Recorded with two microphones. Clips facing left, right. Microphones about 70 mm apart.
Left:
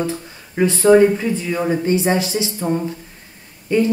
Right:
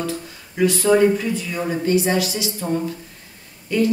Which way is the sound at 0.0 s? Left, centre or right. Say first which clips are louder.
Left 3 dB; left.